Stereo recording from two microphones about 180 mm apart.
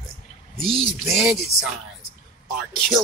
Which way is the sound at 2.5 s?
Centre (ahead or behind).